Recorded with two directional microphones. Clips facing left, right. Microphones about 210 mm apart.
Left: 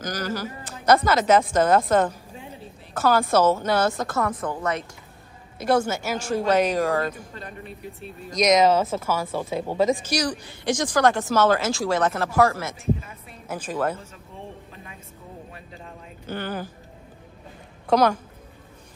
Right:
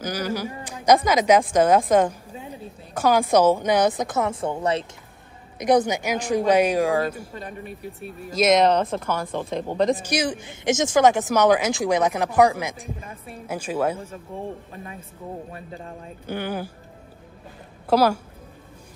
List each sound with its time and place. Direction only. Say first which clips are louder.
0.0 s a woman's voice: right 2 dB; 10° right (ahead or behind); by 4.8 s 25° right (ahead or behind)
5.6 s a woman's voice: right 3 dB; 15° right (ahead or behind); by 10.0 s centre (ahead or behind)
10.0 s a woman's voice: right 1 dB; 20° right (ahead or behind)
15.5 s speech: right 5 dB; 35° right (ahead or behind)
16.3 s a woman's voice: right 2 dB; 10° right (ahead or behind)
17.8 s a woman's voice: right 1 dB; 5° right (ahead or behind)